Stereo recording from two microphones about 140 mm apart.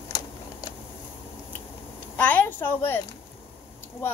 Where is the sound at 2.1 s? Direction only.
10° left (ahead or behind).